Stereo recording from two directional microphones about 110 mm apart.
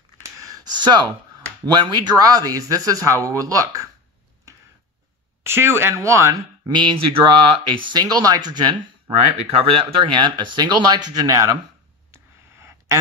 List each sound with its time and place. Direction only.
0.4 s a sound: 35° right (ahead or behind)
1.7 s speech: 40° right (ahead or behind)
5.4 s speech: 25° right (ahead or behind)
6.7 s speech: 45° right (ahead or behind)
9.4 s speech: 60° right (ahead or behind); by 11.5 s 30° right (ahead or behind)
12.5 s a sound: 25° right (ahead or behind)